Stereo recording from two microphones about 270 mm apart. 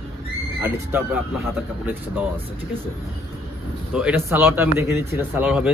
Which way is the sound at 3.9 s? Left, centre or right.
Centre.